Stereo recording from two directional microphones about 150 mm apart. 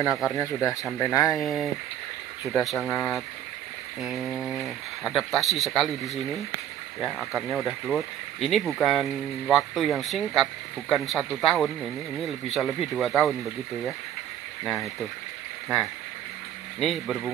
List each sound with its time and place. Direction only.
0.4 s speech: 20° left (ahead or behind)
1.4 s speech: centre (ahead or behind)
14.6 s speech: centre (ahead or behind)
16.8 s speech: centre (ahead or behind)